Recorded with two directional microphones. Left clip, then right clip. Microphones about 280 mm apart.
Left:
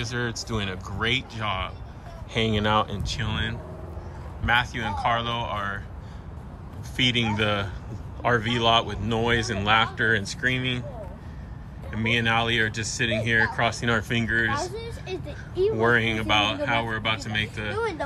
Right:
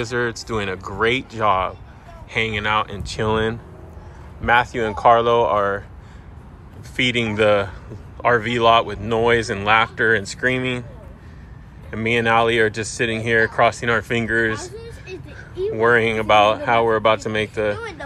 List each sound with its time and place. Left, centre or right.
0.0 s speech: centre
7.0 s speech: centre
11.9 s speech: centre
14.8 s a sound: left
15.7 s speech: centre